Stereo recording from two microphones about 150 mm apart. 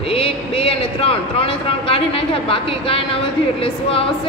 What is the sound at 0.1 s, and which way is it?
A man's voice, 40° left (ahead or behind).